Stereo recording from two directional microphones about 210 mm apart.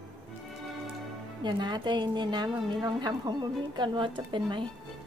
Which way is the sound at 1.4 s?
20° right (ahead or behind).